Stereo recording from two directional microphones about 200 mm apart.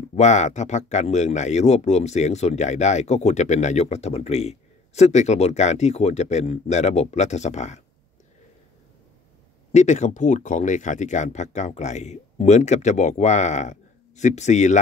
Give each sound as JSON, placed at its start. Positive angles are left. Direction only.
{"t": 0.1, "sound": "speech", "side_deg": 35}
{"t": 9.7, "sound": "speech", "side_deg": 35}